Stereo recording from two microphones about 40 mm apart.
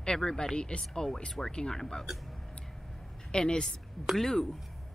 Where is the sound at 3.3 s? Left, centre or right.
Left.